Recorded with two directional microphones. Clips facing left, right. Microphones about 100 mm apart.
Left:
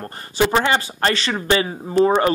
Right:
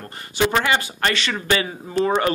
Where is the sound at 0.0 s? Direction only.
35° left (ahead or behind).